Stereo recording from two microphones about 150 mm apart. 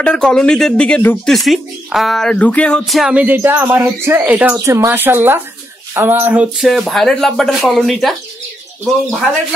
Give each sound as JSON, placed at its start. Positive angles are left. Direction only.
{"t": 0.0, "sound": "speech", "side_deg": 5}